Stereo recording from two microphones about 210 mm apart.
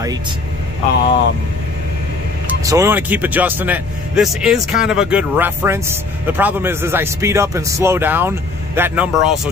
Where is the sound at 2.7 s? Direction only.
15° right (ahead or behind).